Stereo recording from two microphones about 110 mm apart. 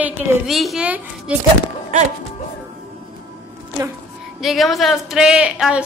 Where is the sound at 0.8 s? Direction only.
10° right (ahead or behind).